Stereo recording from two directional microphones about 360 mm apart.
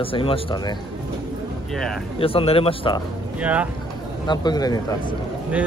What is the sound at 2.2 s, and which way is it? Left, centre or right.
Speech, centre.